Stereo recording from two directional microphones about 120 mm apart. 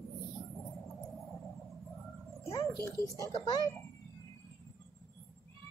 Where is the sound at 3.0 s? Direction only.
30° right (ahead or behind).